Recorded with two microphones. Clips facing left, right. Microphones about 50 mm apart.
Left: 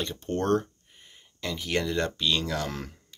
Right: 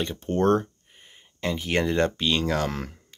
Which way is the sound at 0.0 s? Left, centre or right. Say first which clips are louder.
Right 6 dB; centre.